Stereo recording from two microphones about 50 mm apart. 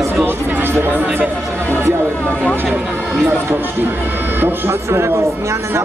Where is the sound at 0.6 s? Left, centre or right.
Right.